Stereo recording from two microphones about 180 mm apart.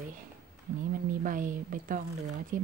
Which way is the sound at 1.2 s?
50° right (ahead or behind).